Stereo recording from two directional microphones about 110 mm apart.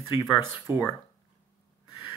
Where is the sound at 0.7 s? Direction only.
20° right (ahead or behind).